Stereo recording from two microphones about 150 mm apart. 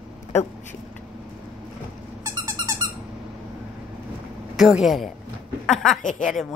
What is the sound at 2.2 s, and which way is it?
Dog, 20° right (ahead or behind).